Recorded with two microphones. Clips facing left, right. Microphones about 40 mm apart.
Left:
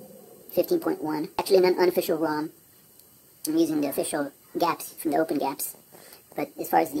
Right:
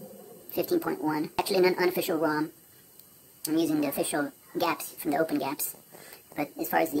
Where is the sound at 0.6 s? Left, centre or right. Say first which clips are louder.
Left 2 dB; right.